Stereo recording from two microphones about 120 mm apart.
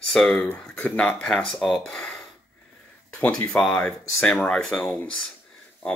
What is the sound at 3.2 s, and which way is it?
Speech, 5° left (ahead or behind).